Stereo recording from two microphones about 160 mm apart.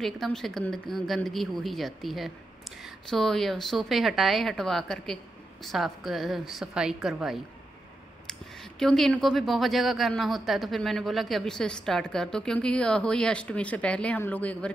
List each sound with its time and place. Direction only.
0.0 s speech: 5° left (ahead or behind)